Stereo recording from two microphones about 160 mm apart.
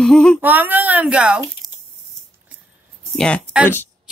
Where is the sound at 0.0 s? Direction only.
5° left (ahead or behind).